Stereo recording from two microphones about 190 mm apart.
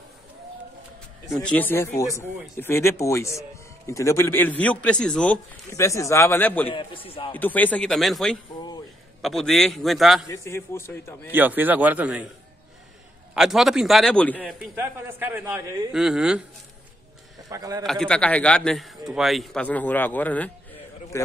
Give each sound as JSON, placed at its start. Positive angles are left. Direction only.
{"t": 1.3, "sound": "speech", "side_deg": 5}
{"t": 6.7, "sound": "a man's voice", "side_deg": 25}
{"t": 7.3, "sound": "a man's voice", "side_deg": 10}
{"t": 10.2, "sound": "speech", "side_deg": 15}
{"t": 11.3, "sound": "a man's voice", "side_deg": -10}
{"t": 13.3, "sound": "a man's voice", "side_deg": 0}
{"t": 14.6, "sound": "a man's voice", "side_deg": -10}
{"t": 17.5, "sound": "a man's voice", "side_deg": -20}
{"t": 17.8, "sound": "a man's voice", "side_deg": 5}